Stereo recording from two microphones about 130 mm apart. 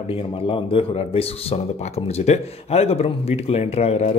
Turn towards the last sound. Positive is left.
turn(degrees=55)  # may be behind; listen again after turning